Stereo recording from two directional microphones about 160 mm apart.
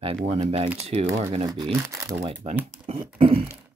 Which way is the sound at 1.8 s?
15° right (ahead or behind).